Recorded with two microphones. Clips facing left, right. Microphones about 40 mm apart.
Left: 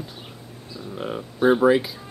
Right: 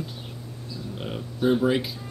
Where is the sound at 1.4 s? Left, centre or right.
Left.